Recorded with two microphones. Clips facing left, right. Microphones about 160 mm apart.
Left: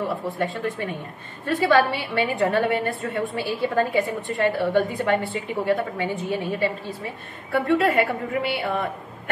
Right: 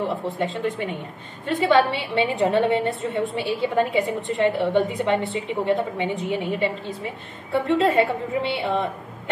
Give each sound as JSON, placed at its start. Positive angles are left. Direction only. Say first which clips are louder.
{"t": 0.0, "sound": "a woman's voice", "louder": "right 1 dB", "side_deg": -20}